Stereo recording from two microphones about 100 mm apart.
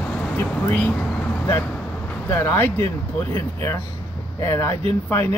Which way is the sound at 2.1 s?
25° left (ahead or behind).